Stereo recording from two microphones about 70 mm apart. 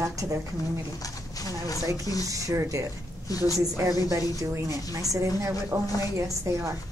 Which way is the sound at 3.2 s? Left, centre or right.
Left.